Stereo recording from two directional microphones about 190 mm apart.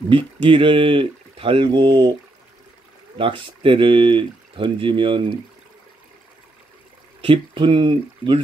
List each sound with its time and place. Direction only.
0.1 s speech: 25° right (ahead or behind)
3.2 s speech: 25° right (ahead or behind)
7.2 s speech: 25° right (ahead or behind)